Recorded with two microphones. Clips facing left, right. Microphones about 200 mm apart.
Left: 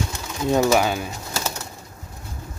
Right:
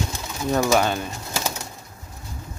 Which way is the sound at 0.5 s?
15° left (ahead or behind).